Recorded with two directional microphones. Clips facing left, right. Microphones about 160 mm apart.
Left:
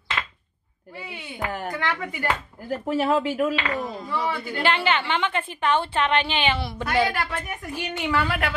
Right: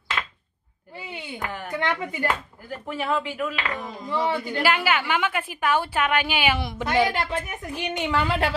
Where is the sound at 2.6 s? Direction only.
40° left (ahead or behind).